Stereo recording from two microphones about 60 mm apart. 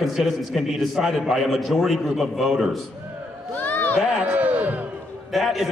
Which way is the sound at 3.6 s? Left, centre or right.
Left.